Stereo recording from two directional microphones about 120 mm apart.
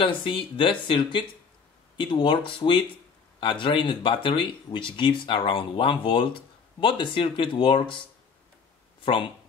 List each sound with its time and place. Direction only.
0.0 s speech: 45° left (ahead or behind)
9.0 s speech: 45° left (ahead or behind)